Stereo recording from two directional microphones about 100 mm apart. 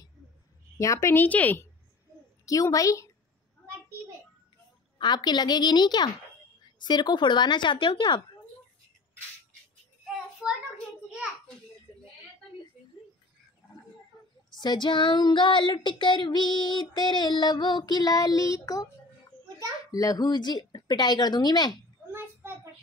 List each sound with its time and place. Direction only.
0.7 s a woman's voice: 30° left (ahead or behind)
1.2 s a woman's voice: 15° left (ahead or behind)
2.4 s a woman's voice: 35° left (ahead or behind)
4.9 s child singing: 45° left (ahead or behind)
10.4 s a sound: 5° right (ahead or behind)
14.6 s child singing: 50° left (ahead or behind)
19.9 s child singing: 35° left (ahead or behind)
22.1 s a sound: 25° right (ahead or behind)